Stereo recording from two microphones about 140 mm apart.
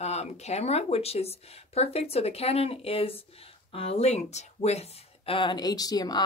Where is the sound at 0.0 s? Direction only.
50° left (ahead or behind).